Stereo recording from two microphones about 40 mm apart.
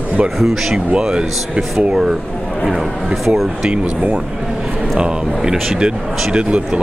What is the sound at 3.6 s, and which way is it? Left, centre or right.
Speech, right.